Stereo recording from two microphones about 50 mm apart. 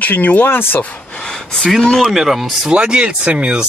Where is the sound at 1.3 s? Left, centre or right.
Centre.